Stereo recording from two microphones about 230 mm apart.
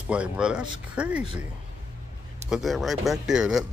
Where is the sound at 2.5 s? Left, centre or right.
Centre.